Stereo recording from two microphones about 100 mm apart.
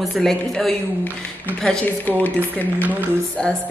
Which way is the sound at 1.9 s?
20° left (ahead or behind).